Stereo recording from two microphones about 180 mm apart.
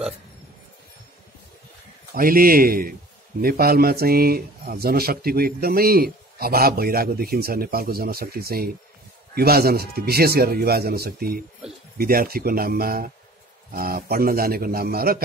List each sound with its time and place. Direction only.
2.1 s speech: 55° right (ahead or behind)